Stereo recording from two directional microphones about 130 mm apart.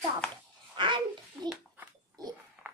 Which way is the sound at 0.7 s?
40° right (ahead or behind).